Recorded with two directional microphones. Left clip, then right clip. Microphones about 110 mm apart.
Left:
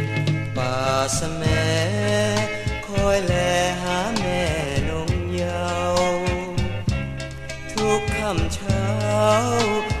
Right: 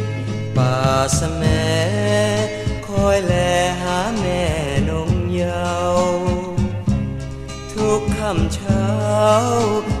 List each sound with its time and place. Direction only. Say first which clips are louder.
0.6 s mantra: right 4 dB; 5° left (ahead or behind)
3.0 s music: right 4 dB; 5° left (ahead or behind)
6.0 s music: right 3 dB; 35° left (ahead or behind)
7.8 s music: right 3 dB; 30° left (ahead or behind)
8.2 s music: right 3 dB; 5° left (ahead or behind)
9.6 s music: right 3 dB; 35° left (ahead or behind)